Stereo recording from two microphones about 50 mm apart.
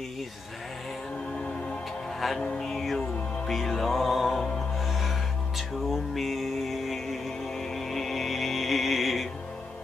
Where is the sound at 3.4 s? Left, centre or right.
Centre.